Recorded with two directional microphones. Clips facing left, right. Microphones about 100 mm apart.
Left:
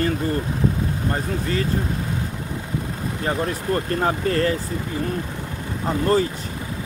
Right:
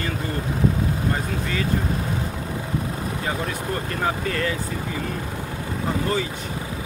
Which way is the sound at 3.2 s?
40° left (ahead or behind).